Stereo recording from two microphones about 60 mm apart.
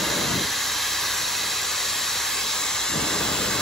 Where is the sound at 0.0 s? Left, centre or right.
Centre.